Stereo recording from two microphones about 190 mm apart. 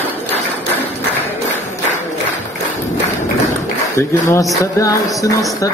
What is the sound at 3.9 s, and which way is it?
Music, 15° left (ahead or behind).